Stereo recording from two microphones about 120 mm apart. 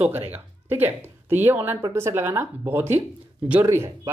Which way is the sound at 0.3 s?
15° right (ahead or behind).